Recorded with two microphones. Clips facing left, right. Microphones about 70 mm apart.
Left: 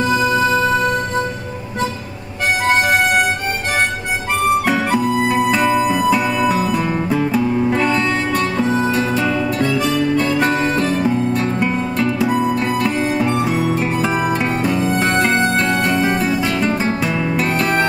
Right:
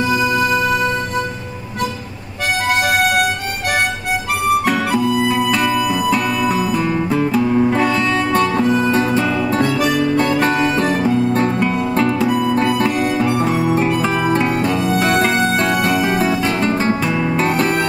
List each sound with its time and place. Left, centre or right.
0.0 s music: left
4.9 s music: left
5.5 s music: centre
8.6 s music: left
10.4 s music: right
11.6 s music: centre
12.3 s music: left
13.0 s music: centre
15.3 s music: right
16.6 s music: centre